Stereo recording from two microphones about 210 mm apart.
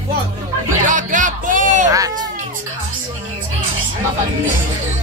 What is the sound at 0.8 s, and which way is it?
Speech, 35° right (ahead or behind).